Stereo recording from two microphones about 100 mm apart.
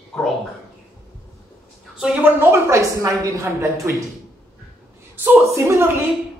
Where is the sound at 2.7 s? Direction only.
30° right (ahead or behind).